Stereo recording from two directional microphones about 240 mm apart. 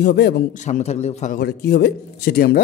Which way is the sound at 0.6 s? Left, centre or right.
Left.